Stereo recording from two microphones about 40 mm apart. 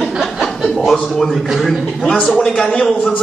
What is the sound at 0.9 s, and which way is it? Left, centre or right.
A man's voice, centre.